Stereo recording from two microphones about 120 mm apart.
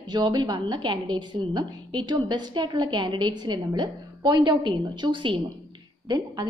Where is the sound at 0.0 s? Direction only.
35° right (ahead or behind).